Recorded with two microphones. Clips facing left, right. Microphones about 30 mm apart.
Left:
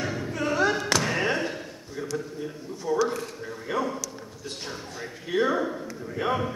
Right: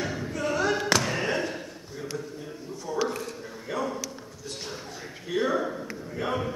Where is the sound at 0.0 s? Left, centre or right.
Centre.